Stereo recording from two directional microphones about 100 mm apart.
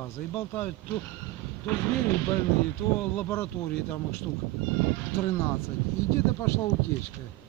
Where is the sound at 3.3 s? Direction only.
25° left (ahead or behind).